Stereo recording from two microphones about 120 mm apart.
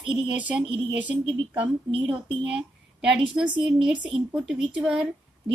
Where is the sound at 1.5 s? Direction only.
45° right (ahead or behind).